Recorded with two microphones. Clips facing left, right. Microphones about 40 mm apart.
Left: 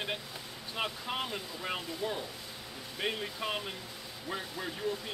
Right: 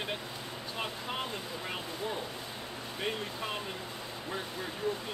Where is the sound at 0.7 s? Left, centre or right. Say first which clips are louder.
Left 2 dB; centre.